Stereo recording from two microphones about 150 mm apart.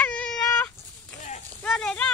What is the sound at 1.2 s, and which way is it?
Run, 50° left (ahead or behind).